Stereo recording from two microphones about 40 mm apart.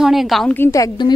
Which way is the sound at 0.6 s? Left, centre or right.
Left.